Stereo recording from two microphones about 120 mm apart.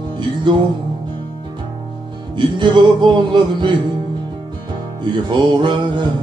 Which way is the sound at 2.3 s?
40° right (ahead or behind).